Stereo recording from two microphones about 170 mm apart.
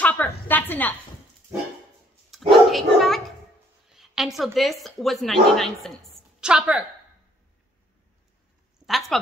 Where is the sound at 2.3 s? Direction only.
Centre (ahead or behind).